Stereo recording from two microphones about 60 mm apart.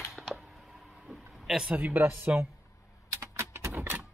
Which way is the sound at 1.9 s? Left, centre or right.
Right.